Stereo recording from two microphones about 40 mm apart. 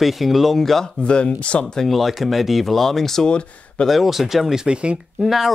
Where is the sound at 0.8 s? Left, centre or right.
Left.